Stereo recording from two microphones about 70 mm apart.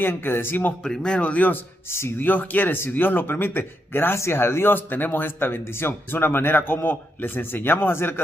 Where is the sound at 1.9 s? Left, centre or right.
Left.